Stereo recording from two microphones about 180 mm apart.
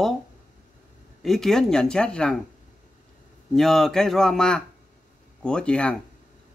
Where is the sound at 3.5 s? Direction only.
Centre (ahead or behind).